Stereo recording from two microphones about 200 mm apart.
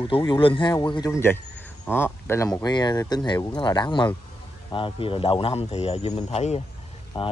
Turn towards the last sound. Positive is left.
turn(degrees=25)  # may be behind; listen again after turning